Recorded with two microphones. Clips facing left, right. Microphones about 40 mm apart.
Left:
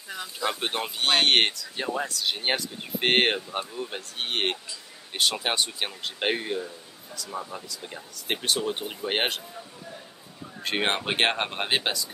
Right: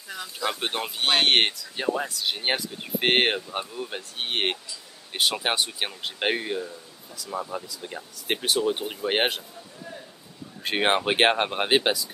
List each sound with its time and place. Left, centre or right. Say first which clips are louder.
0.1 s speech: even; centre
10.6 s speech: right 4 dB; centre